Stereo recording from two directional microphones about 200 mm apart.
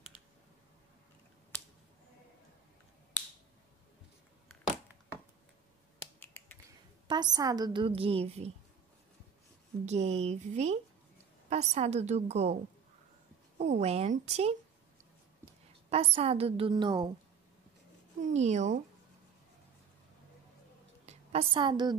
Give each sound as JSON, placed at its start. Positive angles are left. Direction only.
{"t": 0.1, "sound": "computer keyboard", "side_deg": 20}
{"t": 6.1, "sound": "finger snapping", "side_deg": 10}
{"t": 7.1, "sound": "a woman's voice", "side_deg": -20}
{"t": 9.8, "sound": "a woman's voice", "side_deg": -35}
{"t": 13.6, "sound": "a woman's voice", "side_deg": -35}
{"t": 15.9, "sound": "a woman's voice", "side_deg": -30}
{"t": 18.2, "sound": "a woman's voice", "side_deg": -35}
{"t": 21.0, "sound": "a sound", "side_deg": -30}